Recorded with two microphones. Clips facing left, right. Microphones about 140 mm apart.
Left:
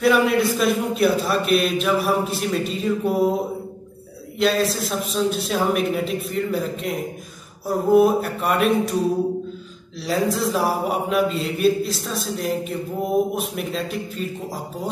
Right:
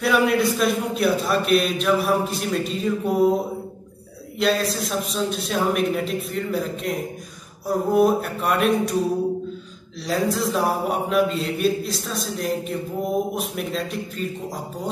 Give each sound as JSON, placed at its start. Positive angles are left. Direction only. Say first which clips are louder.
{"t": 0.0, "sound": "a man's voice", "louder": "left 2 dB", "side_deg": 0}
{"t": 4.4, "sound": "a man's voice", "louder": "left 2 dB", "side_deg": 0}
{"t": 10.0, "sound": "a man's voice", "louder": "left 1 dB", "side_deg": 0}